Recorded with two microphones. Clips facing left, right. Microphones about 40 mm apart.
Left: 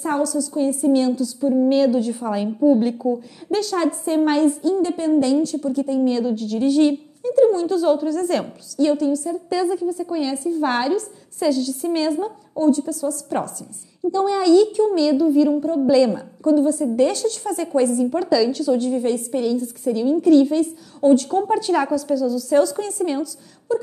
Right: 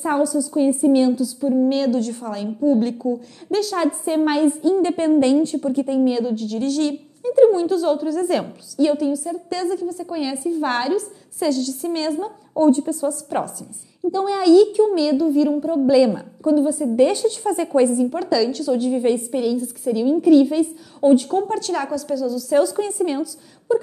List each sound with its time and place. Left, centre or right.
0.0 s a woman's voice: centre
4.8 s a woman's voice: right
6.0 s a woman's voice: centre
6.6 s a woman's voice: centre
7.2 s a sound: centre
7.6 s a woman's voice: centre
12.5 s a woman's voice: right
13.1 s a woman's voice: centre
18.0 s a woman's voice: centre
19.3 s a woman's voice: centre
21.5 s a woman's voice: centre
23.7 s a woman's voice: centre